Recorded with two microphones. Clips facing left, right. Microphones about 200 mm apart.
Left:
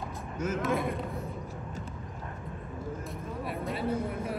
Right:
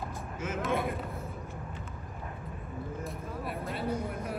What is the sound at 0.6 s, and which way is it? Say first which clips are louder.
Speech: right 1 dB; centre (ahead or behind).